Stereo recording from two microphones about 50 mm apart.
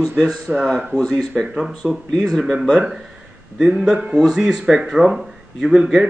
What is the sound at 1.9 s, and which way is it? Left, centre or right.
Speech, centre.